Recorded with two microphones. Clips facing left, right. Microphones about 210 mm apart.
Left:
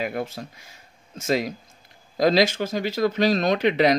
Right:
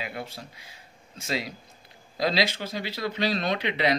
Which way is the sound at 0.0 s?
50° left (ahead or behind).